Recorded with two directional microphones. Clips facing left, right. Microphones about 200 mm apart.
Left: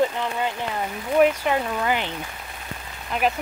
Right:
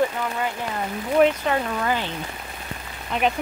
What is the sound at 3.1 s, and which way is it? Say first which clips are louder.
Speech: right 1 dB; centre (ahead or behind).